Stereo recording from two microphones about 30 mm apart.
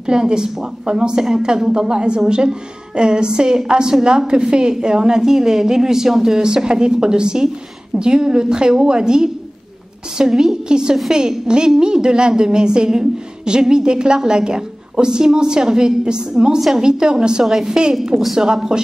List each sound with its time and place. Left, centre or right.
0.0 s a woman's voice: right
6.4 s a woman's voice: right
10.2 s a woman's voice: centre
10.7 s a woman's voice: right
17.5 s a woman's voice: centre
18.4 s a woman's voice: right